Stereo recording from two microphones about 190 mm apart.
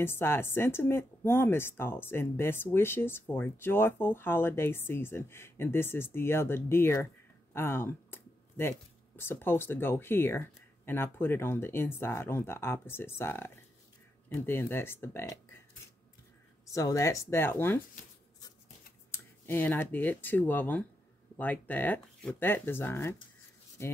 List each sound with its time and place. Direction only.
0.0 s speech: 10° left (ahead or behind)
16.7 s speech: 15° left (ahead or behind)
19.1 s speech: 10° left (ahead or behind)